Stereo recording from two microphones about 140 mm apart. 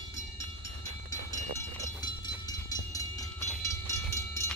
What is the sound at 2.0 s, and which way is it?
Train, 30° left (ahead or behind).